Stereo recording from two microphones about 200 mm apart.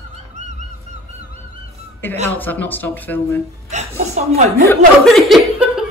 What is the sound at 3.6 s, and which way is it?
Speech, 35° right (ahead or behind).